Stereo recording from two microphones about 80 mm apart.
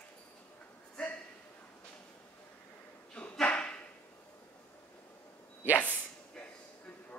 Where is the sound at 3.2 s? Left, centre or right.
Centre.